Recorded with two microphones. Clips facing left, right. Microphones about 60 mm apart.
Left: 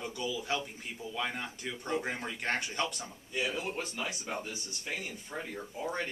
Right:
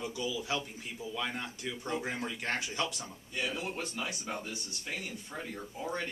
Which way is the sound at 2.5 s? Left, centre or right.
Centre.